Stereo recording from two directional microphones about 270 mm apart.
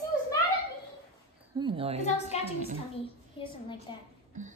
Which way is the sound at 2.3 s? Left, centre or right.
Left.